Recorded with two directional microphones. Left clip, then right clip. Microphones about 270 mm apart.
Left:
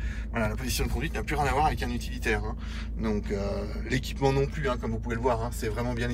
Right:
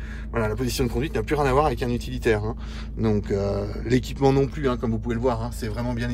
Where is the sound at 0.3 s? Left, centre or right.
Centre.